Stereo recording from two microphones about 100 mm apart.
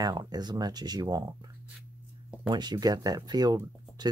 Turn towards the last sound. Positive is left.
turn(degrees=-40)  # may be behind; listen again after turning